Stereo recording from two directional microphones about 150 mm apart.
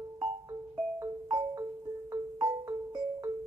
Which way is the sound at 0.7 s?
30° right (ahead or behind).